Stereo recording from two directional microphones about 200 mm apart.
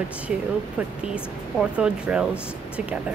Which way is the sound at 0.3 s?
5° right (ahead or behind).